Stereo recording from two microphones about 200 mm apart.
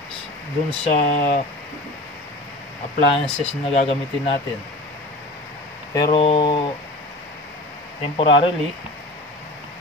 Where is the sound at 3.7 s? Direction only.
30° left (ahead or behind).